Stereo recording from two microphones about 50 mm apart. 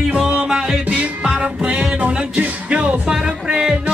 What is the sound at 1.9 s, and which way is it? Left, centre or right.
Music, right.